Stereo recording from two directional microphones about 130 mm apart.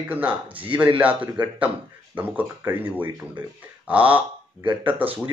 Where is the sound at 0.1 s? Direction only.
10° right (ahead or behind).